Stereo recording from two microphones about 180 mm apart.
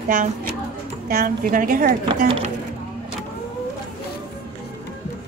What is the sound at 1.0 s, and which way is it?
A woman's voice, 50° right (ahead or behind).